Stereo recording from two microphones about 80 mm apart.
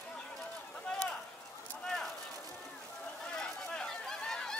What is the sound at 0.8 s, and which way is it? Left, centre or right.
Run, centre.